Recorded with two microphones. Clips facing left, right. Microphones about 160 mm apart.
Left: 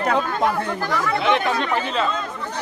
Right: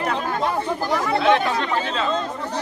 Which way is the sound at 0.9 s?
25° right (ahead or behind).